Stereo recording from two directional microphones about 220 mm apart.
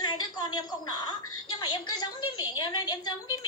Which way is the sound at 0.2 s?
20° left (ahead or behind).